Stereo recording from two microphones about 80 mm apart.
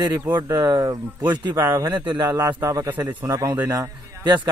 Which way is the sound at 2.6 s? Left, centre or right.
Right.